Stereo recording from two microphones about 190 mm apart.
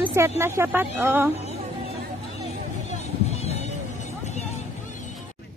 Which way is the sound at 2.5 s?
35° left (ahead or behind).